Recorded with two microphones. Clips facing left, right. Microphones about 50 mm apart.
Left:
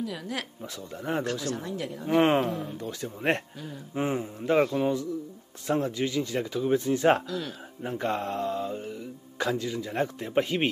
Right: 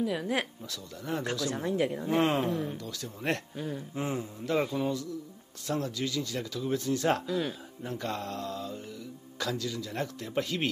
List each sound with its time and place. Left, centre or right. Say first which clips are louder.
0.0 s a woman's voice: right 4 dB; centre
0.6 s speech: left 4 dB; left
1.5 s speech: right 3 dB; right
2.0 s speech: left 7 dB; left
7.2 s speech: right 2 dB; centre
7.8 s speech: left 6 dB; left